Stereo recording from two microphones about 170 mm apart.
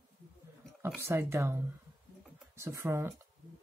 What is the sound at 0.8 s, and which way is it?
Speech, 15° right (ahead or behind).